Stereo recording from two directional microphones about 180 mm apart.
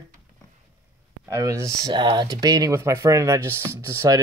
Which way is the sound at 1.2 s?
15° right (ahead or behind).